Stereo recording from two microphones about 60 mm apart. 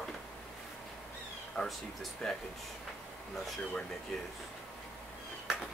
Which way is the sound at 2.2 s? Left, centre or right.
Centre.